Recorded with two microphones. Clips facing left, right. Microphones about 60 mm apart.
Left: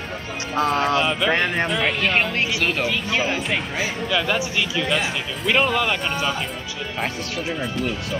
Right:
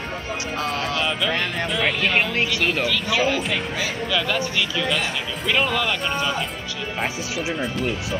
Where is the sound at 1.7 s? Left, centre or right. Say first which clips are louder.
Left 1 dB; centre.